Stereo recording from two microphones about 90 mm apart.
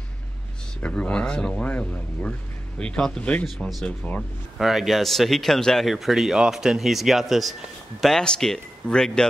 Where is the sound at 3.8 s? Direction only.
15° left (ahead or behind).